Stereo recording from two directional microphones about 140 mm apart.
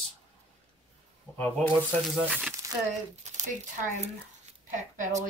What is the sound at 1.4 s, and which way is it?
Speech, 15° left (ahead or behind).